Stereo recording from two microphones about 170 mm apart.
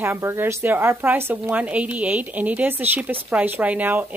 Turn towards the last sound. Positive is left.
turn(degrees=-10)  # may be behind; listen again after turning